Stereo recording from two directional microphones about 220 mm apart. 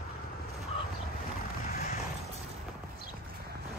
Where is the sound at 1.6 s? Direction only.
40° left (ahead or behind).